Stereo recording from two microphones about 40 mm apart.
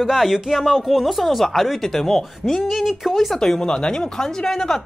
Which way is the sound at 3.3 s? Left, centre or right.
Centre.